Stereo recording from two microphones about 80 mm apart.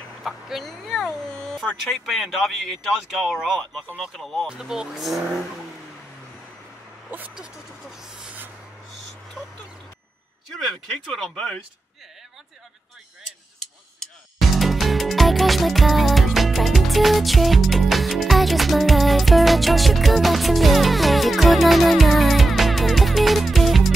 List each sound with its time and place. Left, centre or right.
0.2 s speech: centre
4.5 s speech: centre
7.1 s speech: right
7.3 s speech: centre
11.1 s speech: centre
11.3 s speech: centre
13.6 s music: centre